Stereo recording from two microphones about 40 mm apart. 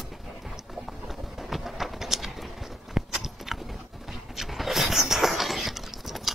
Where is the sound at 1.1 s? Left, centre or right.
Centre.